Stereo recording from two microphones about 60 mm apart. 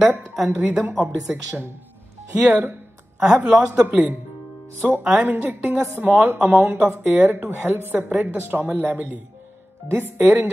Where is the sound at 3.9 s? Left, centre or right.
Right.